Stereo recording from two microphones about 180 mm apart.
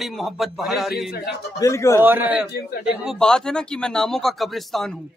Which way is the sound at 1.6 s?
15° left (ahead or behind).